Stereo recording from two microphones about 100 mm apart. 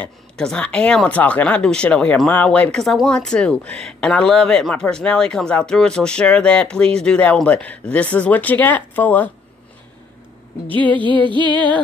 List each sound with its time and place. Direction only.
0.0 s speech: 10° left (ahead or behind)
2.8 s speech: centre (ahead or behind); by 9.3 s 15° left (ahead or behind)
10.7 s speech: 15° left (ahead or behind)
11.0 s music: 55° right (ahead or behind)